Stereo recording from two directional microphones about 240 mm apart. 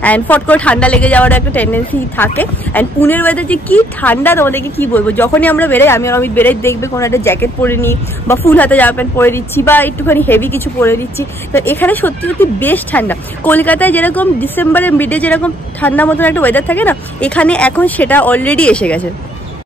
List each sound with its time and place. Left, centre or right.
0.0 s speech: centre